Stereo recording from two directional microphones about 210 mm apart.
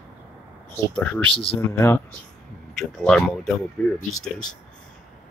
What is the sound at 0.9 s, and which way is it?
Speech, 5° left (ahead or behind).